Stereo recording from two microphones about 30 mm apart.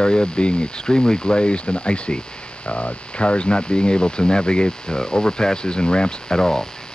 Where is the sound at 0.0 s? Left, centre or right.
Left.